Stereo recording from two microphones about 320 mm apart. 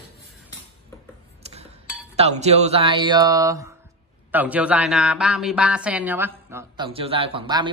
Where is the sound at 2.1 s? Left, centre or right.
Centre.